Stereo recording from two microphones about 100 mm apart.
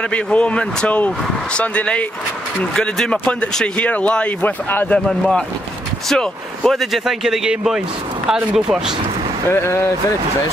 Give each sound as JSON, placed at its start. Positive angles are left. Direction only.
{"t": 0.1, "sound": "speech", "side_deg": 10}
{"t": 5.0, "sound": "speech", "side_deg": 5}
{"t": 9.5, "sound": "speech", "side_deg": 25}